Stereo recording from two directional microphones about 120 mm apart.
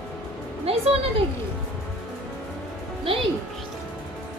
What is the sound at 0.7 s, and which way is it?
Speech, 55° right (ahead or behind).